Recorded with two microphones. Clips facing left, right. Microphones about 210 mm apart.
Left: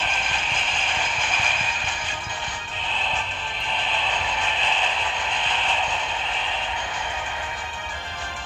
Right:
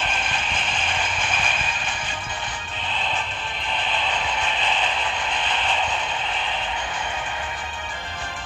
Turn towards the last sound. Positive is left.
turn(degrees=-55)  # may be behind; listen again after turning